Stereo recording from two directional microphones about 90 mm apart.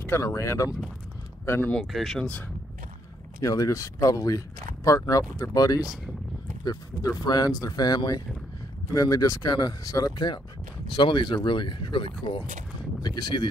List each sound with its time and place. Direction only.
0.0 s speech: 30° left (ahead or behind)
1.6 s speech: 10° left (ahead or behind)
3.3 s speech: 40° left (ahead or behind); by 12.4 s 70° left (ahead or behind)
13.0 s speech: 55° left (ahead or behind)